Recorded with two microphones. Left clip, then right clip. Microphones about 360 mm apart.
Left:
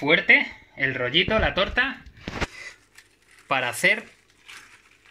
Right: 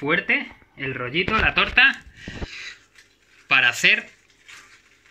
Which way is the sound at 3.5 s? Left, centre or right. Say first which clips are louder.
Right 5 dB; centre.